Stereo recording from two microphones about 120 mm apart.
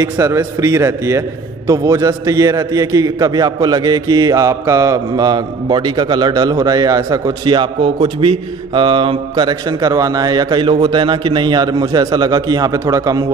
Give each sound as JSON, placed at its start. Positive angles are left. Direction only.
{"t": 0.0, "sound": "a man's voice", "side_deg": -25}